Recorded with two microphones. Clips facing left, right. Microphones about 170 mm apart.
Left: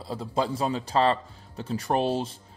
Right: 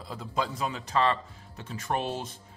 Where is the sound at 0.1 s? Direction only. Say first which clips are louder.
Left 5 dB; 30° left (ahead or behind).